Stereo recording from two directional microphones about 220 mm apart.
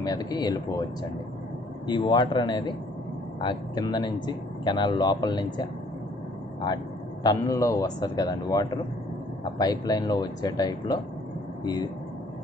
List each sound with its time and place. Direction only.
0.0 s speech: 15° left (ahead or behind)
1.9 s speech: 20° left (ahead or behind)
7.2 s speech: 15° left (ahead or behind)